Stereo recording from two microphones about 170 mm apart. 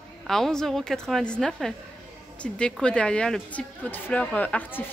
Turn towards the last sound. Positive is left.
turn(degrees=10)  # may be behind; listen again after turning